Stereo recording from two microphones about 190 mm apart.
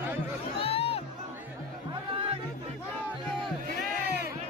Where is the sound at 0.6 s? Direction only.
30° left (ahead or behind).